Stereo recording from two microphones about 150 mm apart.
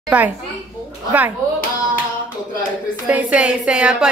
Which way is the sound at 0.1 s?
10° right (ahead or behind).